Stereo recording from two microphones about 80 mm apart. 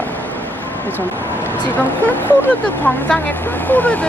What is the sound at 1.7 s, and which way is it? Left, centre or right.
Speech, left.